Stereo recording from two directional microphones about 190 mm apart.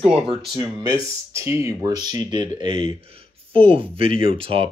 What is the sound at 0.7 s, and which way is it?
Speech, 20° right (ahead or behind).